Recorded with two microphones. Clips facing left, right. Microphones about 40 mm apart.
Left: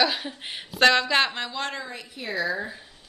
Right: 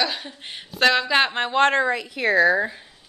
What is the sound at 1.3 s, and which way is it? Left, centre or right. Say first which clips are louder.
Speech: right 12 dB; right.